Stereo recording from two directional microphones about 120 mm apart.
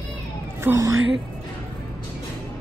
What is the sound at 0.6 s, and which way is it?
Speech, 25° right (ahead or behind).